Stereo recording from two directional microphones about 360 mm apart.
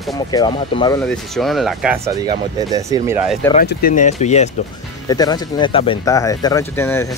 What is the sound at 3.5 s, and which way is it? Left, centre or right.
Speech, left.